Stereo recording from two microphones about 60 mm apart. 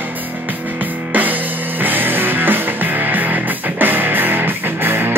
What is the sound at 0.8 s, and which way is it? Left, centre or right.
Music, right.